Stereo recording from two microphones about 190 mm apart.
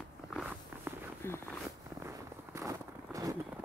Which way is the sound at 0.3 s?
5° right (ahead or behind).